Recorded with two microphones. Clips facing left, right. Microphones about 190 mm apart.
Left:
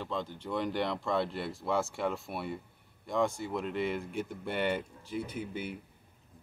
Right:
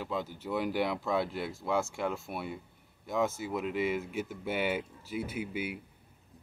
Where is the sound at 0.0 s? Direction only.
5° right (ahead or behind).